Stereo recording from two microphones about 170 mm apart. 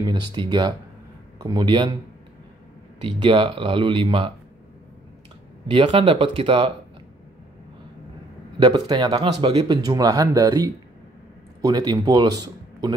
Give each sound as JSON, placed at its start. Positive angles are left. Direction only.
{"t": 0.0, "sound": "speech", "side_deg": -25}
{"t": 3.0, "sound": "speech", "side_deg": -30}
{"t": 5.7, "sound": "speech", "side_deg": -30}
{"t": 8.5, "sound": "speech", "side_deg": -25}